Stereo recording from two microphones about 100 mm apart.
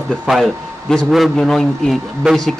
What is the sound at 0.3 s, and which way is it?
Speech, 5° left (ahead or behind).